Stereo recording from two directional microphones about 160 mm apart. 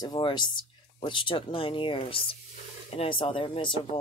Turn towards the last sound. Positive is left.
turn(degrees=30)  # may be behind; listen again after turning